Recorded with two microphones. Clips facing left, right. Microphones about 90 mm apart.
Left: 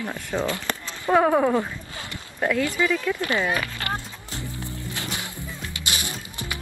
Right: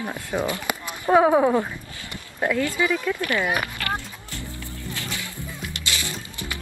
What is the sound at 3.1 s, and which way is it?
Speech, 25° left (ahead or behind).